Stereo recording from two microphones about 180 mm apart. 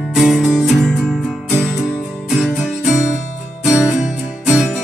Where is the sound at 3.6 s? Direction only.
5° right (ahead or behind).